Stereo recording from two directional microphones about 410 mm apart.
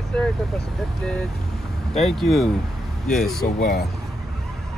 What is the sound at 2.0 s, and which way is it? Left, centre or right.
Speech, centre.